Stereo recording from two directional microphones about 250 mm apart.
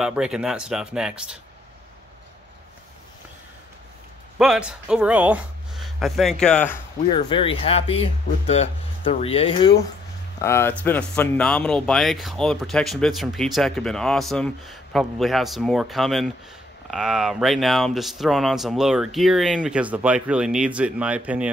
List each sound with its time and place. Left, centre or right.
0.0 s speech: centre
4.4 s speech: centre
7.1 s speech: centre
10.4 s speech: centre